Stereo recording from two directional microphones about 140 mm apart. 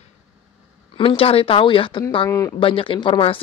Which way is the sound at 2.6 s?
40° left (ahead or behind).